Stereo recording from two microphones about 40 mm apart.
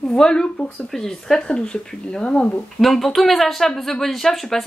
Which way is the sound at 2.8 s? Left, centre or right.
Centre.